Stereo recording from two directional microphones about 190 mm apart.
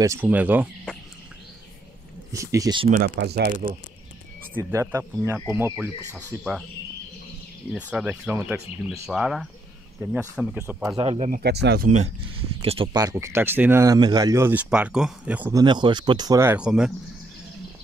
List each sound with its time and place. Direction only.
0.0 s speech: 10° right (ahead or behind)
2.3 s speech: 15° right (ahead or behind)
3.2 s speech: 60° right (ahead or behind)
4.6 s speech: 15° right (ahead or behind)
7.7 s speech: 5° right (ahead or behind)
11.0 s speech: 35° right (ahead or behind)
11.4 s speech: 60° right (ahead or behind)
12.6 s speech: 30° right (ahead or behind); by 15.5 s 5° right (ahead or behind)
15.5 s speech: 25° right (ahead or behind); by 16.9 s 5° right (ahead or behind)